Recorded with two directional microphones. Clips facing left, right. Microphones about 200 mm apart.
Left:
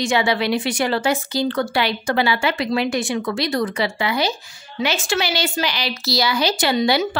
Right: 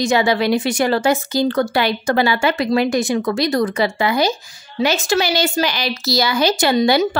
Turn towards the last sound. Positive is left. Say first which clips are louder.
# right 3 dB
turn(degrees=-45)  # may be behind; listen again after turning